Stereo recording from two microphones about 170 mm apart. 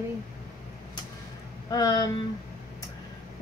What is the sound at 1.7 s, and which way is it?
Speech, 25° left (ahead or behind).